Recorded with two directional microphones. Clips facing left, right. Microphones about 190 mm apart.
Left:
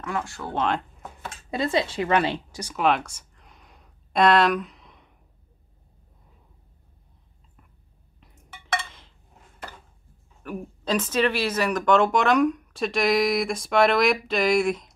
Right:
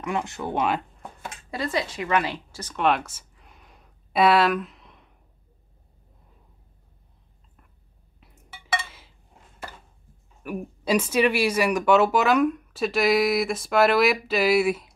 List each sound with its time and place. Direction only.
0.0 s speech: 20° right (ahead or behind)
1.5 s speech: 25° left (ahead or behind)
2.5 s speech: 10° left (ahead or behind)
2.8 s a sound: 5° right (ahead or behind)
8.2 s a sound: 5° right (ahead or behind)
10.4 s a woman's voice: 10° right (ahead or behind)